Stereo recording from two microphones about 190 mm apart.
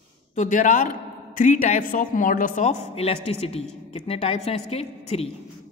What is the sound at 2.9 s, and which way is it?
A woman's voice, 30° left (ahead or behind).